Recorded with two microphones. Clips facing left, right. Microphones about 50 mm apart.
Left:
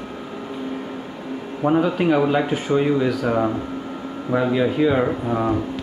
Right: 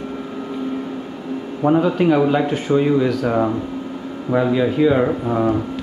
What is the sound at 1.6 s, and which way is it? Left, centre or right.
Speech, centre.